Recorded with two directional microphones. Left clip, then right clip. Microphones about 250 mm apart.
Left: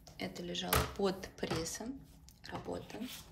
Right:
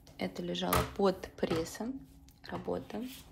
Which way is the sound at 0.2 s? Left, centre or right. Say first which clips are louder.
Right 4 dB; centre.